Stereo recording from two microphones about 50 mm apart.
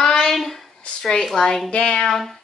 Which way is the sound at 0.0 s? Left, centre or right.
Centre.